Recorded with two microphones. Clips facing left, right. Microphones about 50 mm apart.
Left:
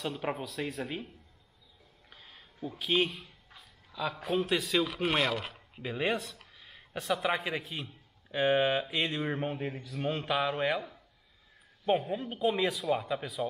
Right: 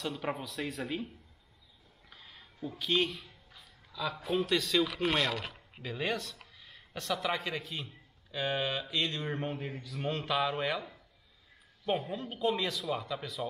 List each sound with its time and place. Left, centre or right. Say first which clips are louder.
0.0 s speech: left 1 dB; centre
2.0 s a sound: even; centre
4.3 s speech: even; centre
5.8 s a man's voice: left 3 dB; centre